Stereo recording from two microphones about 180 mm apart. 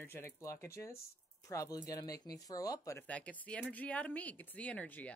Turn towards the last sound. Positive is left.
turn(degrees=10)  # may be behind; listen again after turning